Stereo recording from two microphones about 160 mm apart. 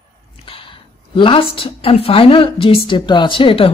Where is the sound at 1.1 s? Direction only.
30° left (ahead or behind).